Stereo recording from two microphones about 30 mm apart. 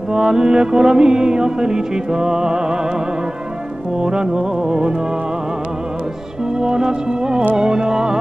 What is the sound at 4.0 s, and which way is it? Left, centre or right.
Music, right.